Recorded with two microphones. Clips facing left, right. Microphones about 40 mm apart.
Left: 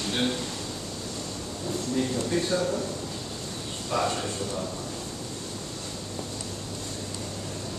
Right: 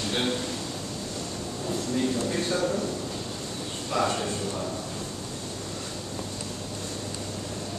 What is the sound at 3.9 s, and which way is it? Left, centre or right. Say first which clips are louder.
Speech: right 1 dB; centre.